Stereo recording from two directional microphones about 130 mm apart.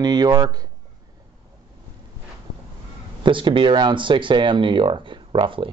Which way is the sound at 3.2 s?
40° right (ahead or behind).